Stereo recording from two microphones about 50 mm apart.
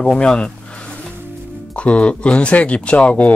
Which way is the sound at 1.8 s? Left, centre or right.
Left.